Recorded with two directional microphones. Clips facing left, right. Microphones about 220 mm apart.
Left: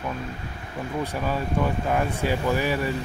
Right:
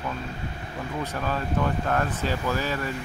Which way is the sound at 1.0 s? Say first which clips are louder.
Left 2 dB; 10° left (ahead or behind).